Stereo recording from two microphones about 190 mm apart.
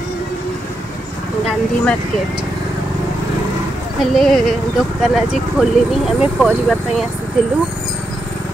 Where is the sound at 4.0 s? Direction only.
Centre (ahead or behind).